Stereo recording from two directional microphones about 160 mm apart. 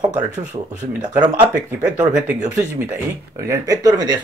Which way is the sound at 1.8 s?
10° right (ahead or behind).